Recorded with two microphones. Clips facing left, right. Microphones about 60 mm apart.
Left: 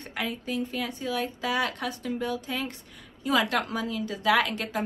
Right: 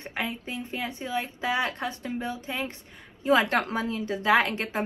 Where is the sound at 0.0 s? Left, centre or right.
Right.